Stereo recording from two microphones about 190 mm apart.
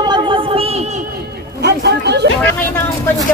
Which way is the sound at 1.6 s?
60° right (ahead or behind).